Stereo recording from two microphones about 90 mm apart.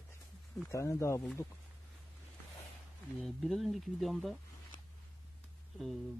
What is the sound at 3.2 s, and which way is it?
Speech, centre (ahead or behind).